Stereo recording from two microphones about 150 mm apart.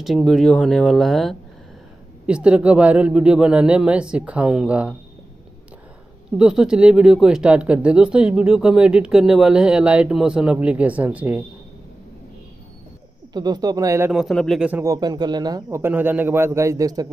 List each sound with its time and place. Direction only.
0.0 s speech: centre (ahead or behind)
6.3 s speech: 5° right (ahead or behind)
13.3 s a man's voice: 30° right (ahead or behind)
14.1 s speech: centre (ahead or behind)
14.7 s speech: 15° right (ahead or behind)
15.0 s a man's voice: 30° right (ahead or behind)